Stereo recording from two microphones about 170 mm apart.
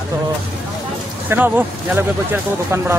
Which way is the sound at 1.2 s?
10° right (ahead or behind).